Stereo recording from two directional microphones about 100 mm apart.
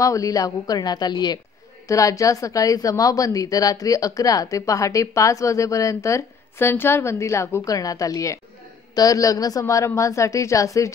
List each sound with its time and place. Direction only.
0.0 s a woman's voice: 35° left (ahead or behind)
1.9 s a woman's voice: 35° left (ahead or behind)